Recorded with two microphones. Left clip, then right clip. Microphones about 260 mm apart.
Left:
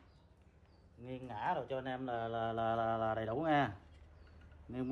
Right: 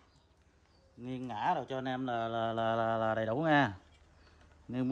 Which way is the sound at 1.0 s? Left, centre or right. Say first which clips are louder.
Right 5 dB; right.